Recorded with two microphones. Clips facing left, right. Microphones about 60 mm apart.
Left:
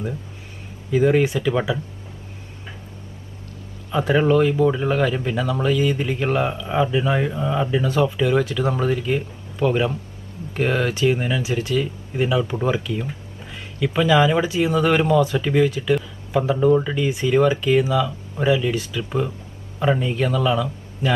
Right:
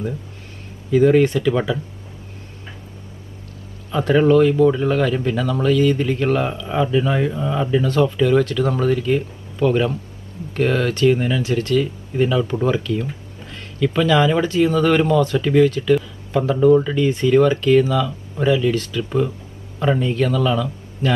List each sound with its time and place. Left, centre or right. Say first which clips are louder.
0.9 s speech: right 4 dB; centre
3.9 s speech: right 3 dB; centre